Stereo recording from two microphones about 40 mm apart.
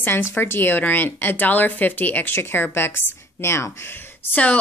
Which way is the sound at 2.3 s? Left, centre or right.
Left.